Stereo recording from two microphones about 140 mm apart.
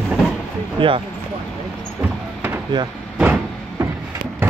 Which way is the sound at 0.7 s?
40° right (ahead or behind).